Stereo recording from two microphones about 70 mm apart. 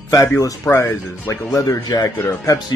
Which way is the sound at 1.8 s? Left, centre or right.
Left.